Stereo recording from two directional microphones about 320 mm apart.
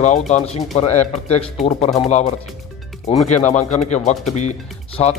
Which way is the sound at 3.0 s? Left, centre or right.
Centre.